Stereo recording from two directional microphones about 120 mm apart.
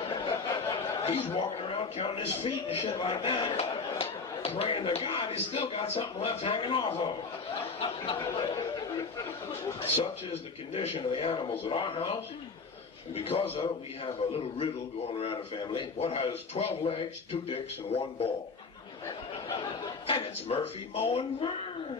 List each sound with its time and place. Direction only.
0.1 s a sound: 40° left (ahead or behind)
1.0 s a man's voice: 50° left (ahead or behind)
10.7 s a man's voice: 60° left (ahead or behind)
15.1 s a man's voice: 45° left (ahead or behind)
20.1 s a man's voice: 50° left (ahead or behind)